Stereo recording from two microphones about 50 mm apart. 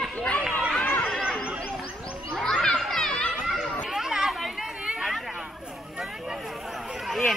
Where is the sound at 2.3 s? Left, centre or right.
Centre.